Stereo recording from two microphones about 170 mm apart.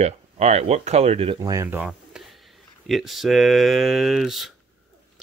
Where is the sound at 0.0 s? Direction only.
40° right (ahead or behind).